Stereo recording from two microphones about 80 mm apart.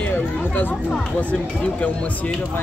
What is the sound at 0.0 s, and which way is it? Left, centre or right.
Chatter, centre.